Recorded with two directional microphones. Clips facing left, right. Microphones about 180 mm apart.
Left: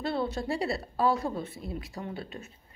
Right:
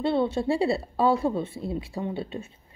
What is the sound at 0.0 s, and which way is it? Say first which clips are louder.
Speech: right 7 dB; 25° right (ahead or behind).